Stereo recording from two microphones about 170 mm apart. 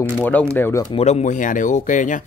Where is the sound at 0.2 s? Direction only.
10° left (ahead or behind).